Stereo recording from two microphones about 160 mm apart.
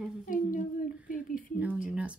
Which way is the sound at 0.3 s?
55° left (ahead or behind).